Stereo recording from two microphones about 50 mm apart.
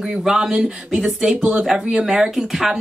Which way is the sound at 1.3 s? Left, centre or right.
Right.